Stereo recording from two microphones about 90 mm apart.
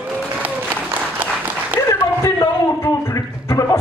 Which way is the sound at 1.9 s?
30° left (ahead or behind).